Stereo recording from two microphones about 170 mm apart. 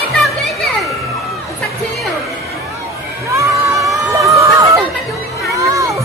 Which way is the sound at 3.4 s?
20° right (ahead or behind).